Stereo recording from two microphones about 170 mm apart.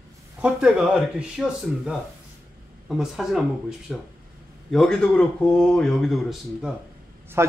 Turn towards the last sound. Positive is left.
turn(degrees=-15)  # may be behind; listen again after turning